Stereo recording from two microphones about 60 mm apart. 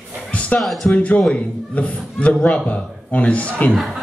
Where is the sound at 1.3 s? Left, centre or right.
Left.